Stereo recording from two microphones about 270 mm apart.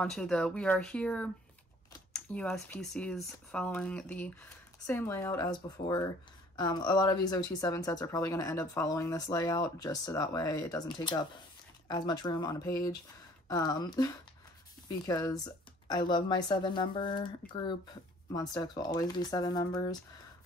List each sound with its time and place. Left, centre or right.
0.0 s speech: centre